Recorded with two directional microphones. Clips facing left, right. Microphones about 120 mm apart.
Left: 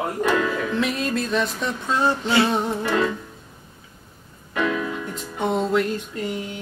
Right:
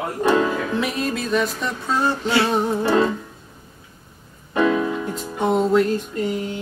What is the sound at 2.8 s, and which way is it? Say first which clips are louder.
Music: right 5 dB; 30° right (ahead or behind).